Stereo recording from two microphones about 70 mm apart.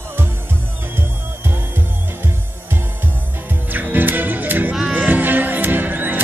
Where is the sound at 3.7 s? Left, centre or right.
Right.